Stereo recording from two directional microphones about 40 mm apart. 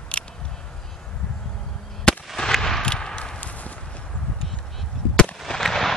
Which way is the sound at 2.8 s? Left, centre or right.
Left.